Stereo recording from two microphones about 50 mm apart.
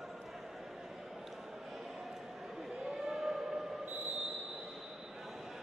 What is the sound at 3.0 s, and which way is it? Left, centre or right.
Civil defense siren, centre.